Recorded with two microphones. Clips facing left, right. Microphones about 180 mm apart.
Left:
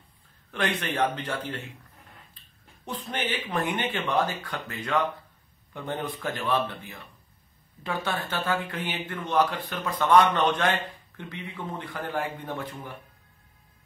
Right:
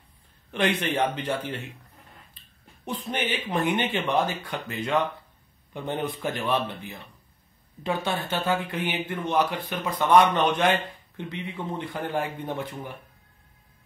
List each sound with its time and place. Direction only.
0.5 s speech: 20° right (ahead or behind)
2.8 s speech: 15° right (ahead or behind)